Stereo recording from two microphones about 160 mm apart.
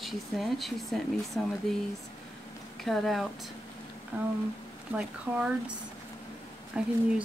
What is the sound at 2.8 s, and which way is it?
Speech, centre (ahead or behind).